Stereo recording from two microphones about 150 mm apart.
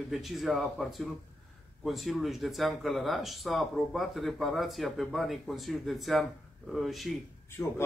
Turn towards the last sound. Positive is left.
turn(degrees=15)  # may be behind; listen again after turning